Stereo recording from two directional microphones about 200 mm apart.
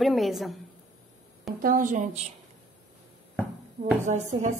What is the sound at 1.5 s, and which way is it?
Speech, 45° right (ahead or behind).